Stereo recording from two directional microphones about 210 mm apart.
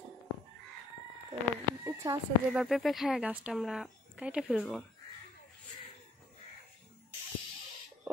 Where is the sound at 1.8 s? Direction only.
15° right (ahead or behind).